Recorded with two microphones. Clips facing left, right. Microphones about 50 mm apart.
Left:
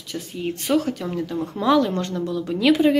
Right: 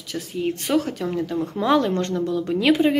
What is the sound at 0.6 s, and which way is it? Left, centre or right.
Speech, right.